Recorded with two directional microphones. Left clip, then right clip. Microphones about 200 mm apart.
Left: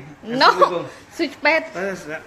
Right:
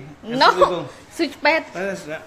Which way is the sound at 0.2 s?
Centre (ahead or behind).